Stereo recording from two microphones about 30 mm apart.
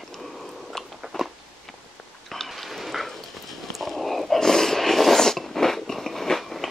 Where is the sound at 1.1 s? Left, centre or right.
Centre.